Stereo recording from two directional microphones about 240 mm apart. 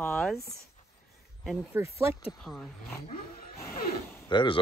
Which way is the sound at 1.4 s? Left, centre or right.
Centre.